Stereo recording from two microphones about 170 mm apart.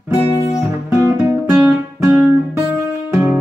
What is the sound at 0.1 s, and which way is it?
Guitar, 20° left (ahead or behind).